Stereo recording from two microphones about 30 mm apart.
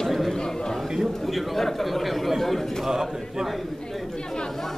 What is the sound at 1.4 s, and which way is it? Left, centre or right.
Speech, centre.